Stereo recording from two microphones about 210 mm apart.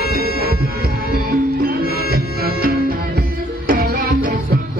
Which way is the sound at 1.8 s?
45° left (ahead or behind).